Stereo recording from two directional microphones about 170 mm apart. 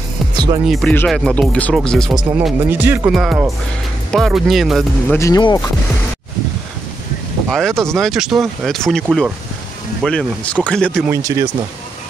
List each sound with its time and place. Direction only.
0.3 s music: 25° right (ahead or behind)
0.7 s speech: centre (ahead or behind)
5.1 s speech: 15° left (ahead or behind)
7.4 s speech: centre (ahead or behind)
11.1 s speech: 15° right (ahead or behind)